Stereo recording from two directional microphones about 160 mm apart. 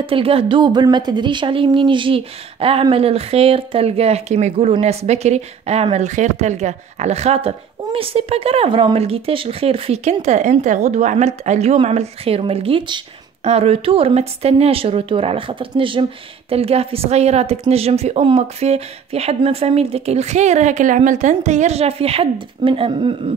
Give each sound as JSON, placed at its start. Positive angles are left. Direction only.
{"t": 0.0, "sound": "speech", "side_deg": -35}